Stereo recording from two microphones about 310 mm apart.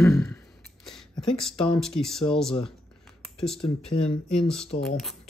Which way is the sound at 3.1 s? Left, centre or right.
Centre.